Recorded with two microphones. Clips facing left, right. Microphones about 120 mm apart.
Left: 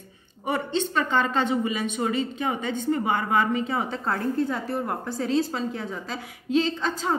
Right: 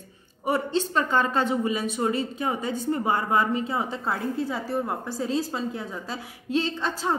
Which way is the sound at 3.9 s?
5° right (ahead or behind).